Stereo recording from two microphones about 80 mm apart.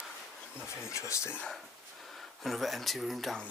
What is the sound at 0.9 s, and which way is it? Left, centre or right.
Speech, left.